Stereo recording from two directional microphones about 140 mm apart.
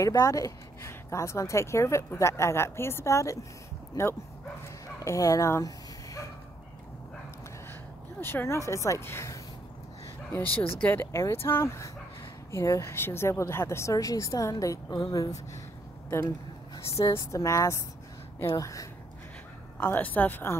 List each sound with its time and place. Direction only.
0.0 s speech: 20° left (ahead or behind)
8.2 s speech: 15° left (ahead or behind)
16.1 s a sound: 20° left (ahead or behind)
17.0 s speech: 20° left (ahead or behind)
19.8 s speech: 10° left (ahead or behind)